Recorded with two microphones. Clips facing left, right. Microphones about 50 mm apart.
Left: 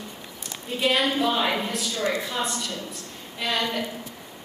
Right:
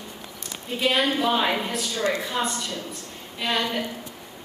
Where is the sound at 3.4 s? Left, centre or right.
Centre.